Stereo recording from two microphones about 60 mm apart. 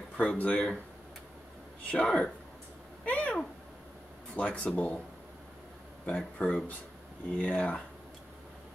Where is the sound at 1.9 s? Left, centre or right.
Centre.